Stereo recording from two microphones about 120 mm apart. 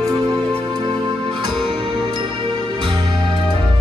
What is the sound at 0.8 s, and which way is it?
Music, 40° right (ahead or behind).